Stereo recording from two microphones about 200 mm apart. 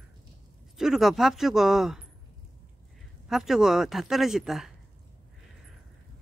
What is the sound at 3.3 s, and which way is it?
Speech, centre (ahead or behind).